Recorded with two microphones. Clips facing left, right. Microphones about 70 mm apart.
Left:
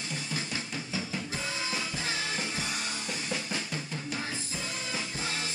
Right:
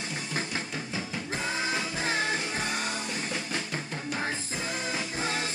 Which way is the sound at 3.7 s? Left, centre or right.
Right.